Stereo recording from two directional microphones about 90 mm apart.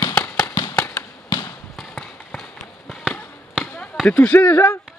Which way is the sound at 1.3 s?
55° left (ahead or behind).